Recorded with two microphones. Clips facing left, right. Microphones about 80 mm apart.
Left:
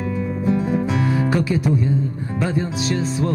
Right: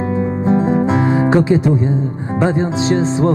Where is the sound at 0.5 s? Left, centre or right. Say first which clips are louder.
Right 6 dB; right.